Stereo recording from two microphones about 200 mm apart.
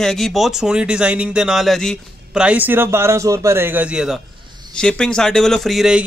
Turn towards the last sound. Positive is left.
turn(degrees=0)  # may be behind; listen again after turning